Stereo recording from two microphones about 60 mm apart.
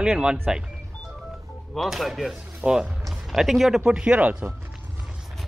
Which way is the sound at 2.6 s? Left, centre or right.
Centre.